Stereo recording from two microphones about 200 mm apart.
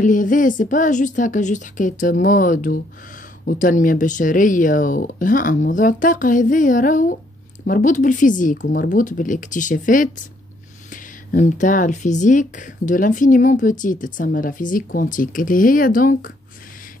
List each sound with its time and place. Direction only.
0.0 s speech: 40° left (ahead or behind)
8.5 s speech: 55° left (ahead or behind)
8.8 s speech: 40° left (ahead or behind)